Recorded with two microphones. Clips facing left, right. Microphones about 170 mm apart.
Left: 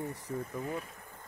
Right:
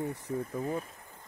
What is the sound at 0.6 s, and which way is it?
Speech, 35° right (ahead or behind).